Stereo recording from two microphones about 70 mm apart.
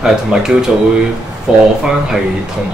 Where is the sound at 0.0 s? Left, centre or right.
Centre.